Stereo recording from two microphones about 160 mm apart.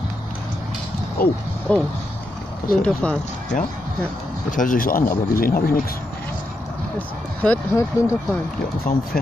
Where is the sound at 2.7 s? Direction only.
65° left (ahead or behind).